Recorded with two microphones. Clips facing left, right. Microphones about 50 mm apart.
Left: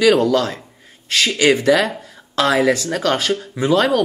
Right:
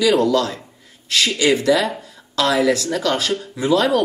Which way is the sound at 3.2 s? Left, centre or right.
Left.